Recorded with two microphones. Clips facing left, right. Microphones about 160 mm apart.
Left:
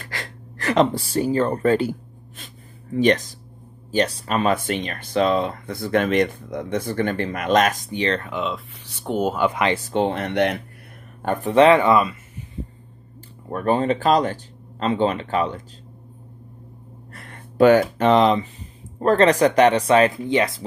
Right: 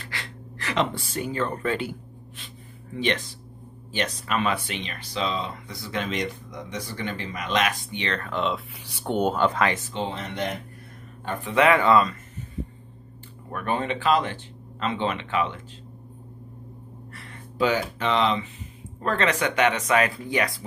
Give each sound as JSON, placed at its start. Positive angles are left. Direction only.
{"t": 0.0, "sound": "a sound", "side_deg": 45}
{"t": 3.9, "sound": "speech", "side_deg": 35}
{"t": 9.0, "sound": "speech", "side_deg": 5}
{"t": 9.8, "sound": "speech", "side_deg": 55}
{"t": 11.2, "sound": "speech", "side_deg": 45}
{"t": 11.5, "sound": "speech", "side_deg": 25}
{"t": 13.5, "sound": "speech", "side_deg": 35}
{"t": 17.1, "sound": "speech", "side_deg": 50}